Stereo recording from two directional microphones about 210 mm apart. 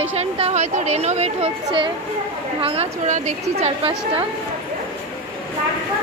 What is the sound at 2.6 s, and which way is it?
A woman's voice, 30° right (ahead or behind).